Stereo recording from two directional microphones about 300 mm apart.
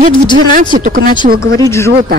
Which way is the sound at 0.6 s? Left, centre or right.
Right.